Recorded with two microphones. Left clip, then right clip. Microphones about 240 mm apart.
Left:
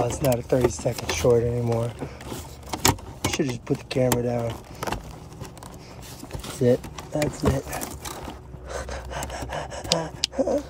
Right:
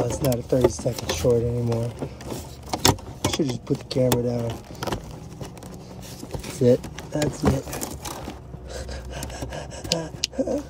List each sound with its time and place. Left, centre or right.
0.0 s speech: centre
1.2 s power windows: centre
6.3 s a sound: centre
10.3 s speech: left